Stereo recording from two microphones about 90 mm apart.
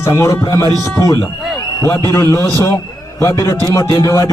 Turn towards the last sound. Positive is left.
turn(degrees=35)  # may be behind; listen again after turning